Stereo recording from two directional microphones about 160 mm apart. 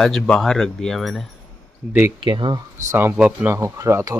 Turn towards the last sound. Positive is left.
turn(degrees=-20)  # may be behind; listen again after turning